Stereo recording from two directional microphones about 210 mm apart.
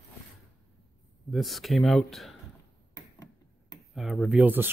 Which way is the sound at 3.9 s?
Centre (ahead or behind).